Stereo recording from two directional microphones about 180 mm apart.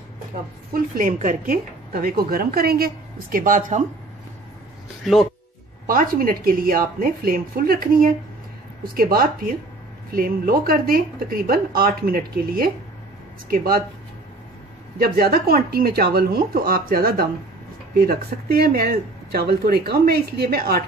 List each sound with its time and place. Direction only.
0.7 s a woman's voice: 50° right (ahead or behind)
5.0 s speech: centre (ahead or behind)
5.9 s a woman's voice: 50° right (ahead or behind)
15.0 s speech: 55° right (ahead or behind)